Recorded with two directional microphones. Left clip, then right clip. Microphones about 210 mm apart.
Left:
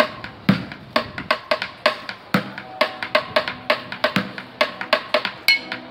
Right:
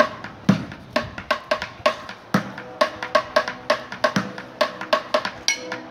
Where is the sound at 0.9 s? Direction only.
Centre (ahead or behind).